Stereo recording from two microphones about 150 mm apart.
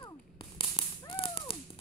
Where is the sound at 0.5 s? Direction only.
40° left (ahead or behind).